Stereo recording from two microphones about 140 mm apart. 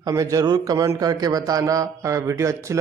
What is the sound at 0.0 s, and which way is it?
A man's voice, 25° right (ahead or behind).